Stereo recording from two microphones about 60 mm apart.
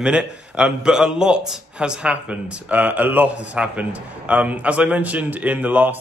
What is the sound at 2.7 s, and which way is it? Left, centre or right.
Speech, right.